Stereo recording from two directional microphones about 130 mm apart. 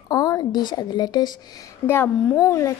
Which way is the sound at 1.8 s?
15° left (ahead or behind).